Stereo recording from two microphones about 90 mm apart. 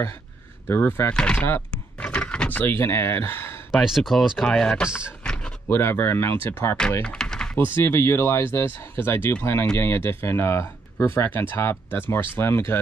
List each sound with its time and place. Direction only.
0.7 s speech: 25° left (ahead or behind)
1.1 s speech: 10° left (ahead or behind)
2.0 s door: 10° left (ahead or behind); by 3.6 s 25° left (ahead or behind)
3.7 s speech: 5° right (ahead or behind)
4.5 s speech: 10° left (ahead or behind)
5.2 s drawer open or close: 10° left (ahead or behind)
5.7 s speech: 30° left (ahead or behind)
7.0 s typing: 10° left (ahead or behind)
7.5 s speech: 25° left (ahead or behind)